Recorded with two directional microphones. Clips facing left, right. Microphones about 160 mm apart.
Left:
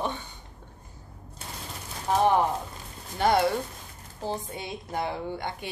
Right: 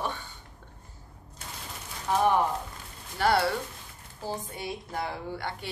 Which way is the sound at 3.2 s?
20° left (ahead or behind).